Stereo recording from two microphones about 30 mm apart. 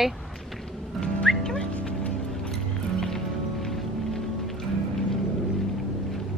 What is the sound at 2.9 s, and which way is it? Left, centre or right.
Music, centre.